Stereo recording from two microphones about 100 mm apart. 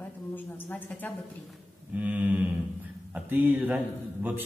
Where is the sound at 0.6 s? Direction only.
20° left (ahead or behind).